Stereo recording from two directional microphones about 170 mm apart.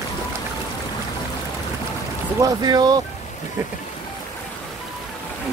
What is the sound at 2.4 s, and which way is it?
Speech, 25° right (ahead or behind).